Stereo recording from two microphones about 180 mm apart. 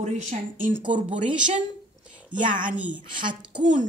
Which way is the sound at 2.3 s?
45° right (ahead or behind).